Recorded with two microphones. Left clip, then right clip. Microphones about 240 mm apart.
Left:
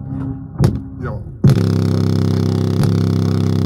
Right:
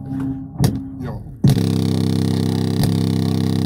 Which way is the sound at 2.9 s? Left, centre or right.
Left.